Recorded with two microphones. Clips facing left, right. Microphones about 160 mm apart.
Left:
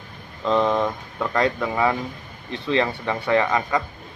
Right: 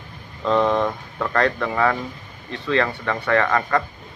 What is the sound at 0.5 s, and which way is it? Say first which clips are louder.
Speech: right 1 dB; 5° left (ahead or behind).